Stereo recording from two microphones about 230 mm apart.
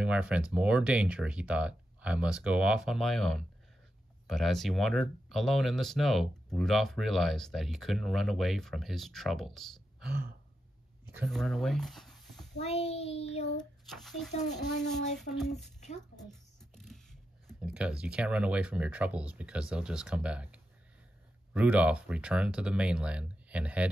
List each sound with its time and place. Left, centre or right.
0.0 s speech: centre
11.2 s speech: centre
12.5 s child singing: left
13.6 s a child's voice: centre